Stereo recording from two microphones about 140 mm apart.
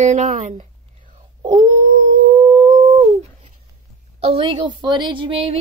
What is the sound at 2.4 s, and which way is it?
Humming, 50° right (ahead or behind).